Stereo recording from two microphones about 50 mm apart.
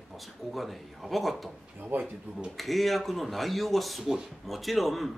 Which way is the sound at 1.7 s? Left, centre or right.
Right.